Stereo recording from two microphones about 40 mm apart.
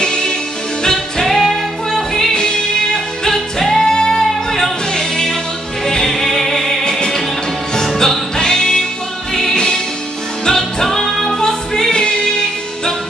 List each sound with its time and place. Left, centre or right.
0.0 s music: centre
4.9 s music: centre
6.8 s music: centre
8.4 s music: centre